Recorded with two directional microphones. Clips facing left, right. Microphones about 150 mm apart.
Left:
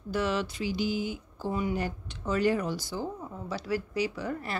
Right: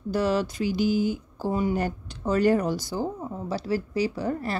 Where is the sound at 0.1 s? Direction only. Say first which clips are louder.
Right 5 dB; 40° right (ahead or behind).